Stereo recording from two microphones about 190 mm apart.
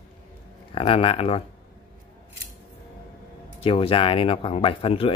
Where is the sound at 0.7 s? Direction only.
30° left (ahead or behind).